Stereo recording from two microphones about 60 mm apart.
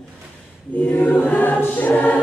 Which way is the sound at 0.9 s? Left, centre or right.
Left.